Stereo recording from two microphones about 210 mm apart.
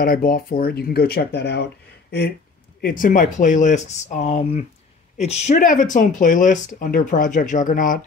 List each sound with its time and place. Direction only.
0.0 s speech: 45° left (ahead or behind)